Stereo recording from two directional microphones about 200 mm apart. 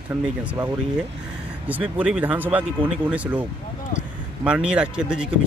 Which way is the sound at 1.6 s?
10° right (ahead or behind).